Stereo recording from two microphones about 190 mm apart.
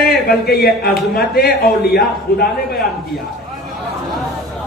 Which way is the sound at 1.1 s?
55° left (ahead or behind).